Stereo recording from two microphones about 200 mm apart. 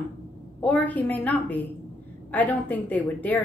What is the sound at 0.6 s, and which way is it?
A woman's voice, 5° left (ahead or behind).